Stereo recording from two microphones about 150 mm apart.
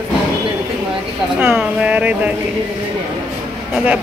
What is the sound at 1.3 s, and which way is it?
Speech, 10° right (ahead or behind).